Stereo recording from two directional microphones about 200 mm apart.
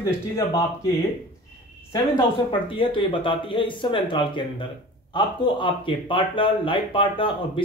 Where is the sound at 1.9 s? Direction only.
25° left (ahead or behind).